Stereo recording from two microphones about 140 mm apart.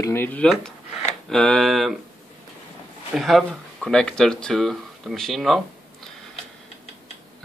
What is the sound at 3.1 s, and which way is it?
Speech, centre (ahead or behind).